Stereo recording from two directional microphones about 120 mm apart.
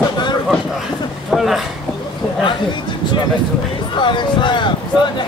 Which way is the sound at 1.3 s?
Centre (ahead or behind).